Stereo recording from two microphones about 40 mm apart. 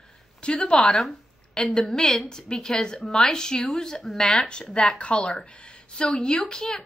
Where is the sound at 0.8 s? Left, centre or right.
Centre.